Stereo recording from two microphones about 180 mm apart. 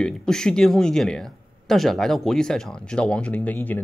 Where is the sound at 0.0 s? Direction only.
5° left (ahead or behind).